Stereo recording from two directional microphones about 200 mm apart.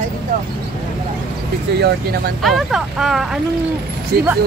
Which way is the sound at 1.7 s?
55° right (ahead or behind).